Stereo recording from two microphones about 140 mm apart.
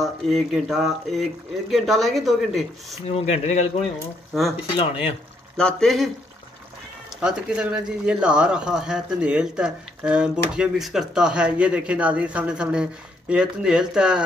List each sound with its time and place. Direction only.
0.0 s speech: centre (ahead or behind)
3.1 s speech: 50° left (ahead or behind)
4.3 s speech: centre (ahead or behind)
5.6 s speech: 5° left (ahead or behind)
7.2 s speech: 5° right (ahead or behind)